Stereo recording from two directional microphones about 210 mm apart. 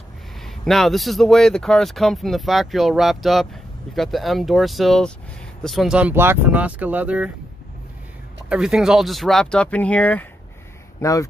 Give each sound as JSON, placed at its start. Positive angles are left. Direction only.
{"t": 0.4, "sound": "speech", "side_deg": 0}
{"t": 8.5, "sound": "speech", "side_deg": -5}